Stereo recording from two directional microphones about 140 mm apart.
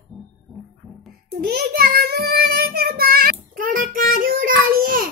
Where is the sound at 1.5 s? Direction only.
90° right.